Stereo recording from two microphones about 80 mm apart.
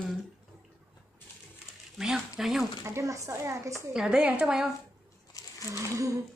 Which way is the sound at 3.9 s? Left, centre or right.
Centre.